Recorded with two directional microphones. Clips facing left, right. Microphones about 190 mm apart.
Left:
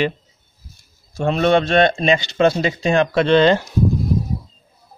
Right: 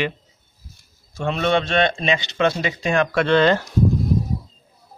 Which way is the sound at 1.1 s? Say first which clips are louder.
Left 4 dB; 35° left (ahead or behind).